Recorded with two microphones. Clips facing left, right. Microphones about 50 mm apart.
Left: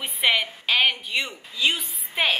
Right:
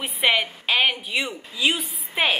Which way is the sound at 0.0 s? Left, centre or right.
Centre.